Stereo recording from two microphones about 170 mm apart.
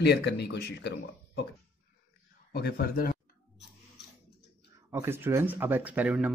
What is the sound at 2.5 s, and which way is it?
Speech, 65° left (ahead or behind).